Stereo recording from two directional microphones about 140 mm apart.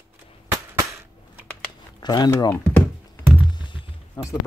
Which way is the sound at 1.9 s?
30° left (ahead or behind).